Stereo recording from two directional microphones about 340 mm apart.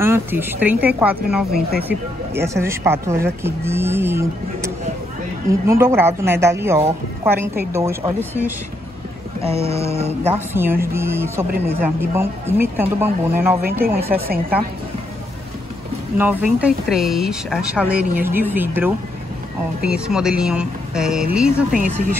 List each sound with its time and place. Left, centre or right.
0.0 s a woman's voice: centre
9.4 s speech: centre
10.3 s speech: centre
13.6 s a woman's voice: right
16.2 s a woman's voice: centre
21.7 s a woman's voice: right